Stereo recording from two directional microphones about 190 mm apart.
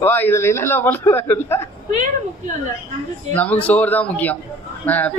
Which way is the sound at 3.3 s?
10° left (ahead or behind).